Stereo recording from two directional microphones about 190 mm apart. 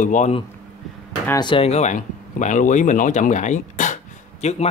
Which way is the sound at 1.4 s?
30° left (ahead or behind).